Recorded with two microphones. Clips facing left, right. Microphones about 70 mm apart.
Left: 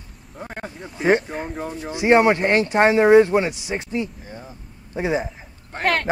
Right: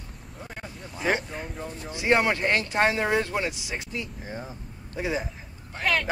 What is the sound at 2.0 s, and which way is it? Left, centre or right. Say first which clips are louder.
Speech: left 7 dB; left.